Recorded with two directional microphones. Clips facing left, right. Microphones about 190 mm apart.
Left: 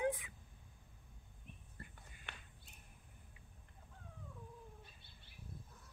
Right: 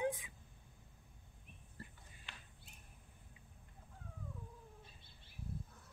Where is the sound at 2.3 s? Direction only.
60° left (ahead or behind).